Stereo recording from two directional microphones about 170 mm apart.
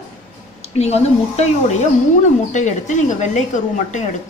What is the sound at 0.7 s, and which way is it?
A woman's voice, 40° left (ahead or behind).